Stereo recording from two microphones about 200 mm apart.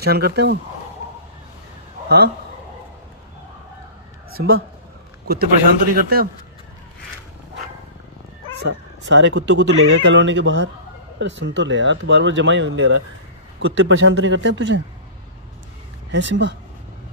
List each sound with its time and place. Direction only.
0.0 s speech: 50° right (ahead or behind)
2.0 s a man's voice: 55° right (ahead or behind)
4.4 s speech: 50° right (ahead or behind)
5.9 s speech: 45° right (ahead or behind)
8.6 s a man's voice: 65° right (ahead or behind)
16.1 s speech: 65° right (ahead or behind)